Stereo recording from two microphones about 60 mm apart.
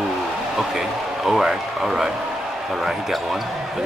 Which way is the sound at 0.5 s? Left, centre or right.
Centre.